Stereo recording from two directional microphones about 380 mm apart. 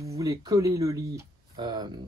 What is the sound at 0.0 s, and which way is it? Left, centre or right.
Speech, centre.